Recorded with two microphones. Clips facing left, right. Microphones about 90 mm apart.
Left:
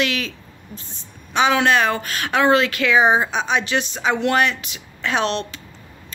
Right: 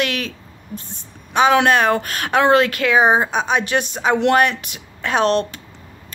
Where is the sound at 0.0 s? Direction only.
50° right (ahead or behind).